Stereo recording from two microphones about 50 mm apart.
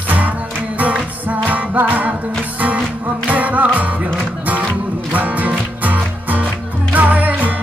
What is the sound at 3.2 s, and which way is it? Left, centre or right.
Music, right.